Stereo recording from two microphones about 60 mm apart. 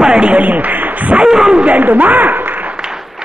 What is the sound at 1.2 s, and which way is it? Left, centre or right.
Speech, centre.